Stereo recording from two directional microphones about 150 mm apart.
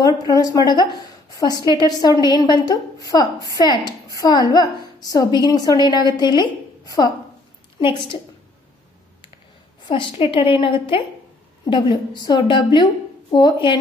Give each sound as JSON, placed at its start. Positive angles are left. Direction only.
{"t": 0.0, "sound": "a woman's voice", "side_deg": 25}
{"t": 9.8, "sound": "a woman's voice", "side_deg": 35}